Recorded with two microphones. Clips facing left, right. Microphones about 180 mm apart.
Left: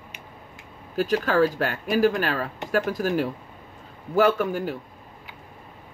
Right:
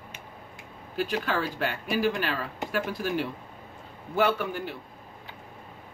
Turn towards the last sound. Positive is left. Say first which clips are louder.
# left 5 dB
turn(degrees=45)  # may be behind; listen again after turning